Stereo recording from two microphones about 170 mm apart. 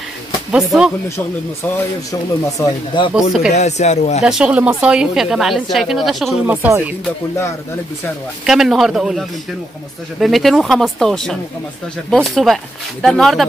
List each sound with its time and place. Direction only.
0.5 s speech: 5° right (ahead or behind)
2.4 s speech: 25° left (ahead or behind)
3.2 s speech: 5° right (ahead or behind)
3.5 s speech: 40° left (ahead or behind)
4.2 s speech: 5° right (ahead or behind)
6.4 s speech: 10° right (ahead or behind)
8.5 s speech: centre (ahead or behind)
10.2 s speech: centre (ahead or behind)